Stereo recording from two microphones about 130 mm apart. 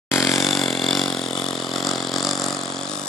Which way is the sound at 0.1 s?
Centre (ahead or behind).